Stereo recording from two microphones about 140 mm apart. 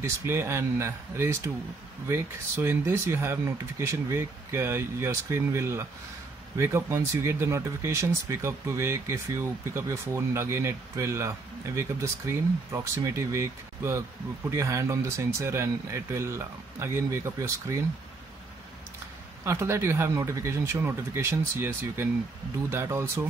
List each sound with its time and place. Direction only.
0.0 s speech: 20° right (ahead or behind)
19.4 s speech: 20° right (ahead or behind)